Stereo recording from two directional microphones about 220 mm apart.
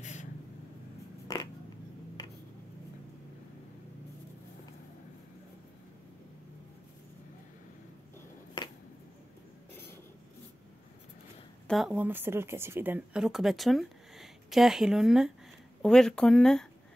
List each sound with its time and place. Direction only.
0.0 s vehicle: 30° left (ahead or behind)
1.2 s a sound: 15° left (ahead or behind)
11.6 s speech: centre (ahead or behind)